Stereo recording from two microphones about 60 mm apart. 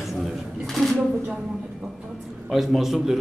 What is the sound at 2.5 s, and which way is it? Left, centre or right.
Speech, centre.